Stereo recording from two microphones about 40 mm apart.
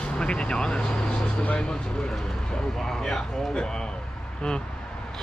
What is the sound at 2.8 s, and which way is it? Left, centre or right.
Speech, centre.